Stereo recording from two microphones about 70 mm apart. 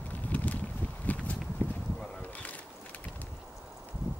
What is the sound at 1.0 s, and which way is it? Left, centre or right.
Walk, left.